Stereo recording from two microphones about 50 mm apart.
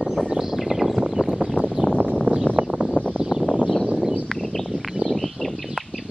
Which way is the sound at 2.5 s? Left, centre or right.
Right.